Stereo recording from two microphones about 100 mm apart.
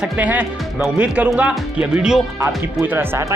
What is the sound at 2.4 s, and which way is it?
Speech, 25° right (ahead or behind).